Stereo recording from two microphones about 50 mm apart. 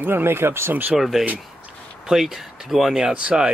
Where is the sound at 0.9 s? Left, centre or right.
Centre.